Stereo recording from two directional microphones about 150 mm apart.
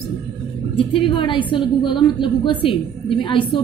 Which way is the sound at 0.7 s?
35° left (ahead or behind).